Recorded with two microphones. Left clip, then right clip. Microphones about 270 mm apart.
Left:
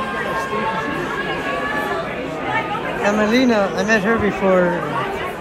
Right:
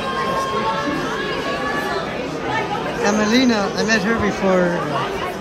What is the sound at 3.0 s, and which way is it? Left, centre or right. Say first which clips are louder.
Speech: left 1 dB; centre.